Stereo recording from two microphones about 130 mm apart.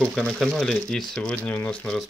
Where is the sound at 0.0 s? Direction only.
5° left (ahead or behind).